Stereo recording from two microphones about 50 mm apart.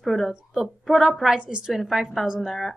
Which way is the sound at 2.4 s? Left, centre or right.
Centre.